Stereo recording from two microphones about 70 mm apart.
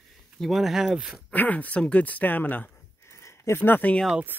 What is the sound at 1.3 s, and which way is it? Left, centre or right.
Speech, left.